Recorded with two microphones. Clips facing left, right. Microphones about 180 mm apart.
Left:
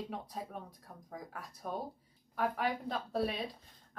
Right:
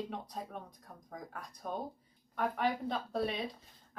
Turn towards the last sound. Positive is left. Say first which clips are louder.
# right 2 dB
turn(degrees=0)  # may be behind; listen again after turning